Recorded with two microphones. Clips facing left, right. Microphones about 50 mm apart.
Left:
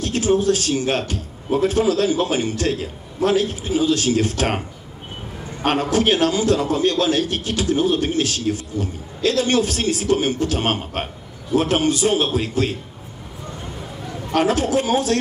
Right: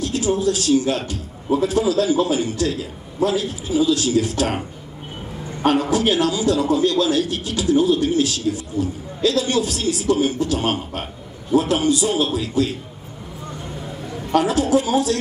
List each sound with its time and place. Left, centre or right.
0.0 s a man's voice: left
5.7 s a man's voice: left
14.3 s a man's voice: left